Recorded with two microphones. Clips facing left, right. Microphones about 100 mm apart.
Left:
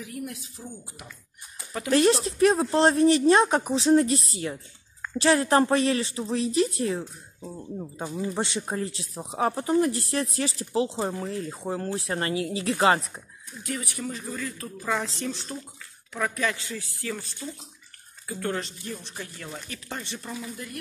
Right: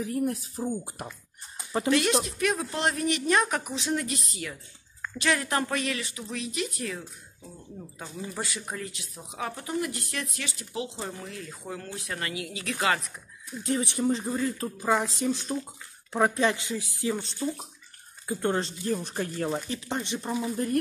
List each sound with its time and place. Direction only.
0.0 s speech: 35° right (ahead or behind)
1.9 s speech: 35° left (ahead or behind)
13.6 s a woman's voice: 25° right (ahead or behind)
16.1 s speech: 30° right (ahead or behind)
19.7 s speech: 20° right (ahead or behind)